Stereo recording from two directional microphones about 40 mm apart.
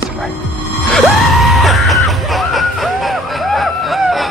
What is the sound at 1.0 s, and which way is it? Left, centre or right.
Music, centre.